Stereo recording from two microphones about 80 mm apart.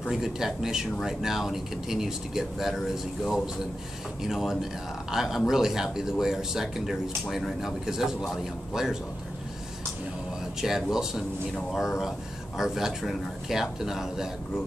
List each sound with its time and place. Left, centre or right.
0.1 s speech: centre
10.6 s speech: centre